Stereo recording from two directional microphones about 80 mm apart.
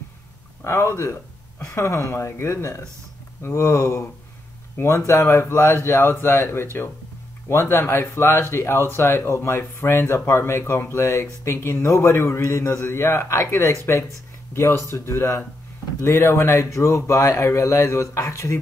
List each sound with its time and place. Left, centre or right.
0.7 s speech: left